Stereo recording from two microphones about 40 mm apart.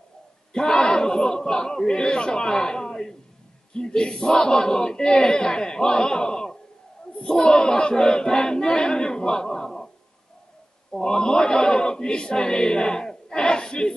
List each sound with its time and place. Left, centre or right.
0.5 s a man's voice: centre
10.9 s speech: centre